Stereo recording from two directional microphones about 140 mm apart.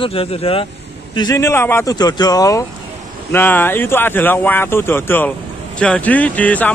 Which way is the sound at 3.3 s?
15° left (ahead or behind).